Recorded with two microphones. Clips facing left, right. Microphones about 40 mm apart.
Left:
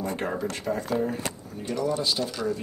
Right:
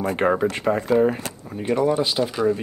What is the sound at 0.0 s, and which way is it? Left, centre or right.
Speech, right.